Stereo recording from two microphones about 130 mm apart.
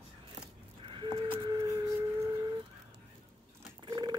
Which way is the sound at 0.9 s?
40° right (ahead or behind).